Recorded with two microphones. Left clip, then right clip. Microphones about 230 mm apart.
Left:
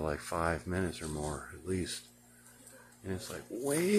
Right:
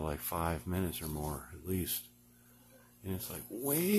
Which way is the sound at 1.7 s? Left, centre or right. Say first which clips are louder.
Left 2 dB; right.